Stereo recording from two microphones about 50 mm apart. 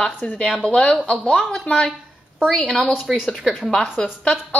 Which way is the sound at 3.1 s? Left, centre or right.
Centre.